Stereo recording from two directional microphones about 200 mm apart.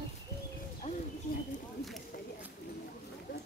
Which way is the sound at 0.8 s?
35° left (ahead or behind).